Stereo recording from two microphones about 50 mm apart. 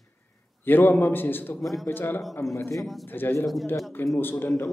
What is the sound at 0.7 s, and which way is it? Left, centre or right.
Speech, left.